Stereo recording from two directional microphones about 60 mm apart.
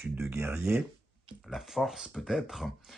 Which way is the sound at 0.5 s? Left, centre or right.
Centre.